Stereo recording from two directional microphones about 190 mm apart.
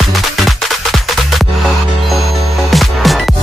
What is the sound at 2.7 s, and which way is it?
Music, centre (ahead or behind).